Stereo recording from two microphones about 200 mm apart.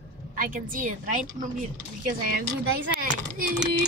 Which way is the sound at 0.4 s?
45° right (ahead or behind).